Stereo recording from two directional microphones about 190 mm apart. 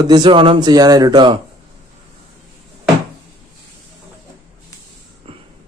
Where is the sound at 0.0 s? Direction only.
25° right (ahead or behind).